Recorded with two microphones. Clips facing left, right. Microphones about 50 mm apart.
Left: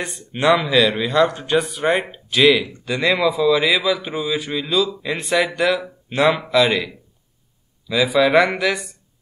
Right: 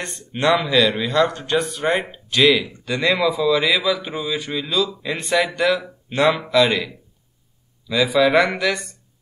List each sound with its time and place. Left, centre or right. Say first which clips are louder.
0.0 s speech: left 1 dB; centre
7.9 s speech: left 1 dB; centre